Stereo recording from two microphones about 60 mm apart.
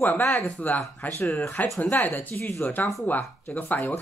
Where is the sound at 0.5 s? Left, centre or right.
Left.